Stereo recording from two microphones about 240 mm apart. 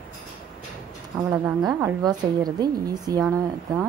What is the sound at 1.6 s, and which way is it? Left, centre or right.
Speech, centre.